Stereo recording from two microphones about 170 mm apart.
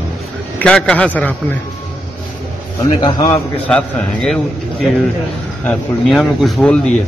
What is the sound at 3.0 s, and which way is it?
Speech, 25° left (ahead or behind).